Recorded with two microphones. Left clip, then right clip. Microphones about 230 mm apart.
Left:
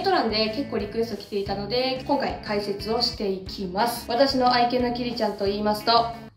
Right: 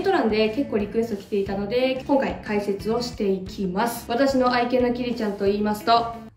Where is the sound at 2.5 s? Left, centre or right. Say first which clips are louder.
Right 2 dB; right.